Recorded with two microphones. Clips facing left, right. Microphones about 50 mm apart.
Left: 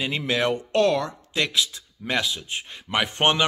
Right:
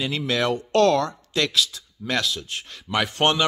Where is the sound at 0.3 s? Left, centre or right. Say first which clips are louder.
Right 1 dB; centre.